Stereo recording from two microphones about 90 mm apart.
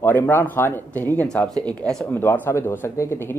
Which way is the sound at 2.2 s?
25° left (ahead or behind).